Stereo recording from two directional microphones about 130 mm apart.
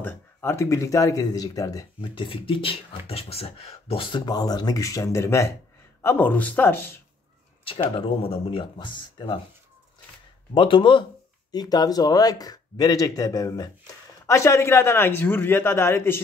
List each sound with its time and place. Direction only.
0.0 s speech: 15° left (ahead or behind)
2.0 s speech: 40° left (ahead or behind); by 7.0 s 15° left (ahead or behind)
7.6 s speech: 45° left (ahead or behind)
10.5 s speech: 40° left (ahead or behind); by 16.2 s 20° left (ahead or behind)